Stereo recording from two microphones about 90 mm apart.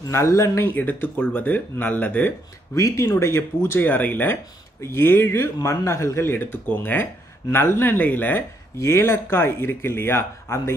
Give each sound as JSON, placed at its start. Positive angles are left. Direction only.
{"t": 0.1, "sound": "speech", "side_deg": 35}
{"t": 0.7, "sound": "speech", "side_deg": 20}
{"t": 2.7, "sound": "speech", "side_deg": 35}